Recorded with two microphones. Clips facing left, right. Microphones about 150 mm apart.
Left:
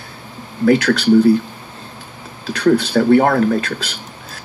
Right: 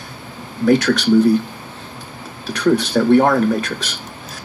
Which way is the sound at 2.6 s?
60° left (ahead or behind).